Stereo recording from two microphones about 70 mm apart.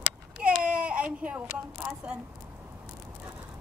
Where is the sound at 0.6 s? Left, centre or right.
Centre.